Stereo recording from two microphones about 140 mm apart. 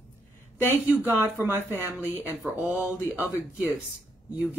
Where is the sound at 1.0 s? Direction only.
15° right (ahead or behind).